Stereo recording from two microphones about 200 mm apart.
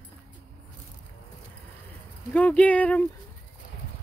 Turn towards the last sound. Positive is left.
turn(degrees=5)  # may be behind; listen again after turning